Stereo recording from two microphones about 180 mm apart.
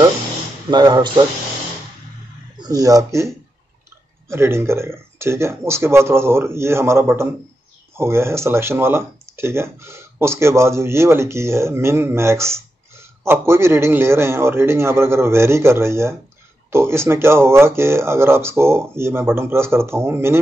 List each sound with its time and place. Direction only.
0.7 s speech: 25° right (ahead or behind)
2.6 s speech: 20° right (ahead or behind)
4.3 s speech: 15° right (ahead or behind)